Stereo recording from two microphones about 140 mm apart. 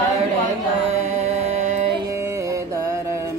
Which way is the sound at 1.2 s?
55° right (ahead or behind).